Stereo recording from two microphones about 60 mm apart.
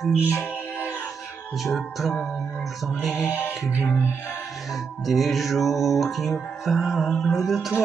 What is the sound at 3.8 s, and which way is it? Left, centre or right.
Music, left.